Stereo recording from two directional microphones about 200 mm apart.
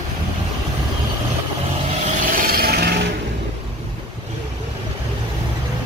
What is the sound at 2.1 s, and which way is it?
Vehicle, 45° right (ahead or behind).